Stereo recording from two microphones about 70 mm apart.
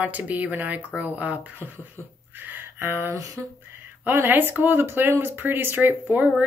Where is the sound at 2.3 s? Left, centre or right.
Right.